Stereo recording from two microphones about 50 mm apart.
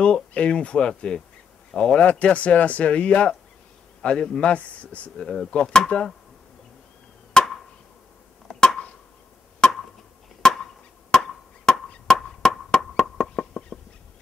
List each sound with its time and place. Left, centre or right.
0.0 s speech: left
2.0 s a man's voice: left
5.2 s speech: centre
7.3 s chop: centre
8.5 s a sound: centre
10.4 s chop: centre
12.1 s a sound: centre